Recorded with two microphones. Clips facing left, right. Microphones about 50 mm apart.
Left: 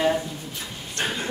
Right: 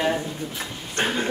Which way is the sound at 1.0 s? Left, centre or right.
Right.